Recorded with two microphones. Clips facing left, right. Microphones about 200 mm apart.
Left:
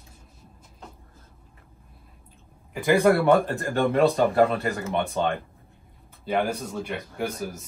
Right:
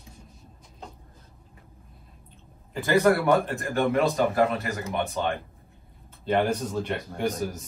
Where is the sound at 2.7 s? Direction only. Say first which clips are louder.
Left 1 dB; 15° left (ahead or behind).